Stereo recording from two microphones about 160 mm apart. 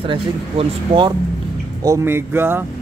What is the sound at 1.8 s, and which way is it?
Speech, 15° right (ahead or behind).